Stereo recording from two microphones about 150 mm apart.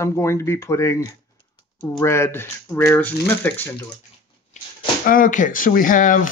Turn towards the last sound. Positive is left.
turn(degrees=60)  # may be behind; listen again after turning